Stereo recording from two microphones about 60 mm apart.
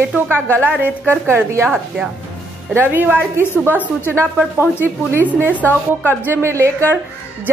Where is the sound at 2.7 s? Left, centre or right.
Right.